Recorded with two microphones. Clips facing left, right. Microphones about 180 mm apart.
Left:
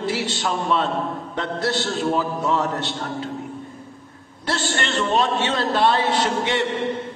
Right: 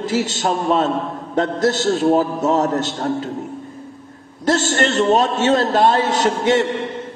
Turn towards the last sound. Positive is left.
turn(degrees=-45)  # may be behind; listen again after turning